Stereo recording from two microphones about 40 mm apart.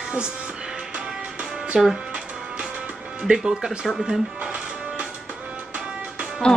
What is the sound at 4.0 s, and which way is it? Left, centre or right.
Speech, centre.